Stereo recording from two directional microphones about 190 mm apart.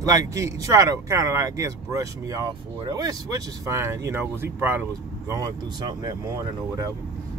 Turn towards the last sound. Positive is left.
turn(degrees=-15)  # may be behind; listen again after turning